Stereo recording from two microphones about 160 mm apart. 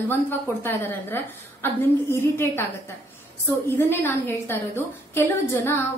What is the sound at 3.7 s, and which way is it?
A woman's voice, 15° left (ahead or behind).